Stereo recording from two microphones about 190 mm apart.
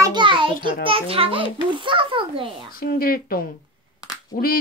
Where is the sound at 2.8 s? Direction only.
50° left (ahead or behind).